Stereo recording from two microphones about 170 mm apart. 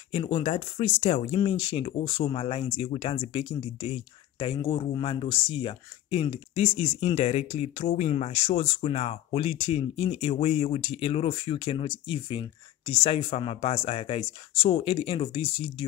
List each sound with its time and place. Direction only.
0.1 s speech: 35° left (ahead or behind)